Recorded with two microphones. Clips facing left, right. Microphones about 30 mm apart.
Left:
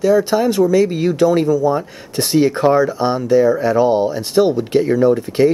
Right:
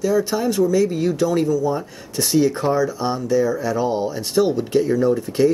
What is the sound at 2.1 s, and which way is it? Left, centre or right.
Speech, left.